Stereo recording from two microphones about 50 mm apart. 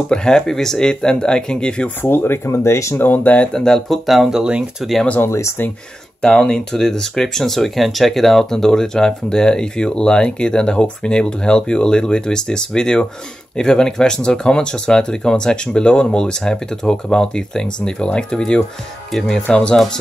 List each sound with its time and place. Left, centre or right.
0.1 s speech: centre
2.0 s speech: left
2.5 s speech: left
3.0 s speech: left
3.5 s speech: centre
4.0 s speech: centre
4.4 s speech: centre
6.2 s speech: centre